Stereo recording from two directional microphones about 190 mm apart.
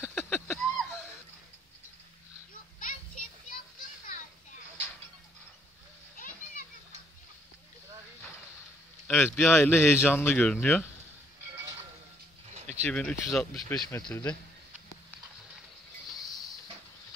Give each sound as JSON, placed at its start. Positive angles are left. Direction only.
{"t": 0.2, "sound": "a sound", "side_deg": 10}
{"t": 2.5, "sound": "children playing", "side_deg": 45}
{"t": 6.1, "sound": "children playing", "side_deg": 45}
{"t": 9.0, "sound": "speech", "side_deg": 10}
{"t": 12.5, "sound": "a sound", "side_deg": -35}
{"t": 12.9, "sound": "speech", "side_deg": 5}
{"t": 13.8, "sound": "speech", "side_deg": 15}